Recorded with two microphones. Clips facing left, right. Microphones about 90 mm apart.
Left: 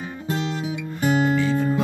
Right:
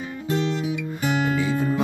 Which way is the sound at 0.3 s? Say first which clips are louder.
Right 2 dB; 30° left (ahead or behind).